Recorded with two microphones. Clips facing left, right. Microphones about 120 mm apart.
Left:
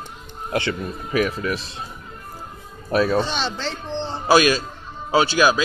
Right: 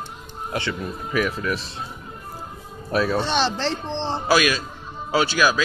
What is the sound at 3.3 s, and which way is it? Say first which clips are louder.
Speech: right 4 dB; 65° right (ahead or behind).